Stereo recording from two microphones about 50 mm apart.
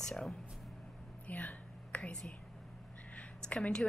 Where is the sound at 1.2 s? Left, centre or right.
Left.